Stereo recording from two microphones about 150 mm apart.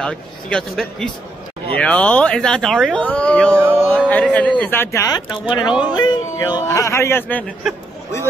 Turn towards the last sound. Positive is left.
turn(degrees=0)  # may be behind; listen again after turning